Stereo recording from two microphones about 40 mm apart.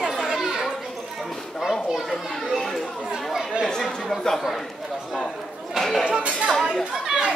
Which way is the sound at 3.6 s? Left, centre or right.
Centre.